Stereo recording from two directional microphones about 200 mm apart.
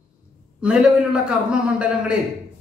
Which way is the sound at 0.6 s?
5° right (ahead or behind).